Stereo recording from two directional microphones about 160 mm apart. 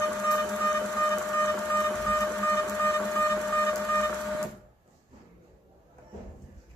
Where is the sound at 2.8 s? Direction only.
10° left (ahead or behind).